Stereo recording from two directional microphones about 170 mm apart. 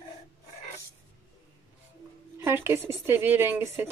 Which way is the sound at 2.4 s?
15° right (ahead or behind).